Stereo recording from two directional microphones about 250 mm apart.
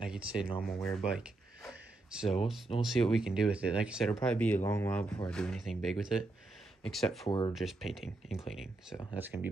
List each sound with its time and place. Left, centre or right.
0.0 s speech: centre
7.2 s speech: centre
7.5 s speech: centre